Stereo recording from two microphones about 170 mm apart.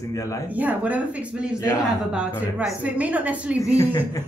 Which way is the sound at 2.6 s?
10° right (ahead or behind).